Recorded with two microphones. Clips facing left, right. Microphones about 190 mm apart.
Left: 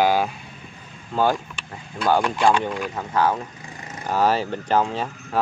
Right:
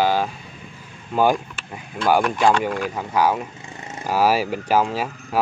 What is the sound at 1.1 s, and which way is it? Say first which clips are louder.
Speech: right 3 dB; 15° right (ahead or behind).